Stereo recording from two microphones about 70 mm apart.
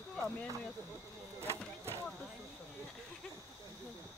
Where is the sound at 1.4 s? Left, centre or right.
Right.